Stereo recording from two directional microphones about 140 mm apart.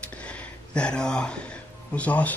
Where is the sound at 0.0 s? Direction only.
10° left (ahead or behind).